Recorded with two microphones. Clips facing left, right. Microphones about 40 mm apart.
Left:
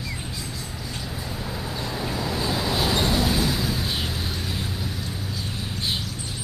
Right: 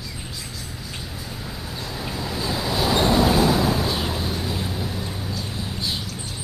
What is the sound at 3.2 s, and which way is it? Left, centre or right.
Vehicle, right.